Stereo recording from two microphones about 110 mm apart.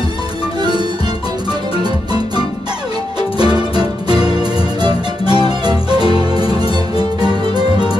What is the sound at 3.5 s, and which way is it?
Music, 40° right (ahead or behind).